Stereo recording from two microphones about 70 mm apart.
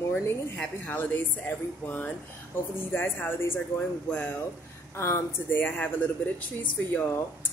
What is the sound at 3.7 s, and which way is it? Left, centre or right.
Speech, centre.